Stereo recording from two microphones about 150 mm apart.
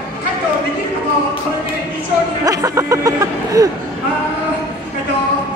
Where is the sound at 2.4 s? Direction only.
20° right (ahead or behind).